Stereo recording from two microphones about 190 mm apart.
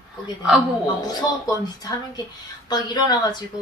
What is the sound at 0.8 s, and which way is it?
Speech, 20° left (ahead or behind).